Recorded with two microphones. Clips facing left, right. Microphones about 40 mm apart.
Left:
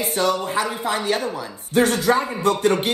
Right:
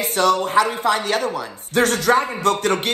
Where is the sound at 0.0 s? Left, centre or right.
Right.